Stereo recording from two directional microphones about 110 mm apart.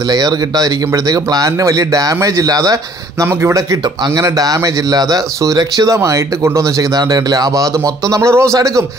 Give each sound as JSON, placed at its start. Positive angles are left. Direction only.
{"t": 0.1, "sound": "speech", "side_deg": -35}